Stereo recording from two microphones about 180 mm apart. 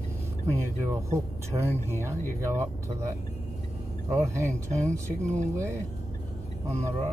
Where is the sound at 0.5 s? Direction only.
15° right (ahead or behind).